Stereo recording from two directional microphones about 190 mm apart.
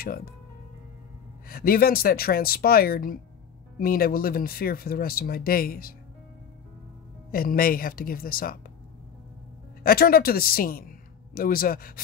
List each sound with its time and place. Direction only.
0.0 s speech: 50° left (ahead or behind)
1.5 s speech: 50° left (ahead or behind)
7.2 s speech: 50° left (ahead or behind)
9.8 s a man's voice: 50° left (ahead or behind)